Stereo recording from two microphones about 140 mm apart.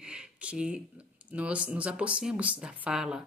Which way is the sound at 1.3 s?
10° right (ahead or behind).